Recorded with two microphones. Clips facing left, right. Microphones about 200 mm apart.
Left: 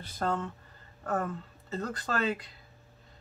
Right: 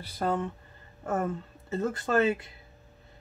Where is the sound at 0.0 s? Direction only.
15° right (ahead or behind).